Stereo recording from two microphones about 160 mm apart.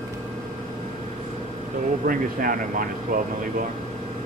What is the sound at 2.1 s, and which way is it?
Speech, 60° right (ahead or behind).